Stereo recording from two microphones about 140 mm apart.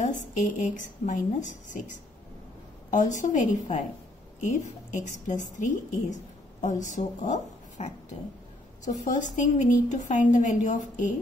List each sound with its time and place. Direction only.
0.0 s a woman's voice: 60° left (ahead or behind)
2.9 s a woman's voice: 60° left (ahead or behind)